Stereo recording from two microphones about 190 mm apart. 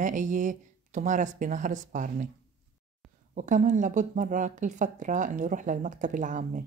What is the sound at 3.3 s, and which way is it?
A woman's voice, 40° right (ahead or behind).